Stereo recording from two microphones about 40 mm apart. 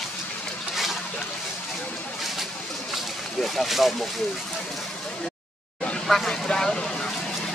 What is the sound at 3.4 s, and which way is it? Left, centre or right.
Speech, centre.